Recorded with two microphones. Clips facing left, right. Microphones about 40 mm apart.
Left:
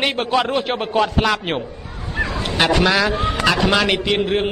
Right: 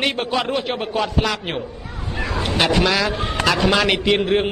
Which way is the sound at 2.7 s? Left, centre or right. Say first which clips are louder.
Left 2 dB; centre.